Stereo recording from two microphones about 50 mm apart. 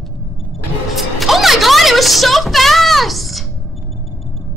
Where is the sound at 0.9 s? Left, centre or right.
Centre.